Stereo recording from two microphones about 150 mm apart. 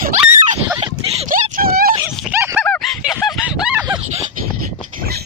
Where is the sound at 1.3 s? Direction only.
75° right (ahead or behind).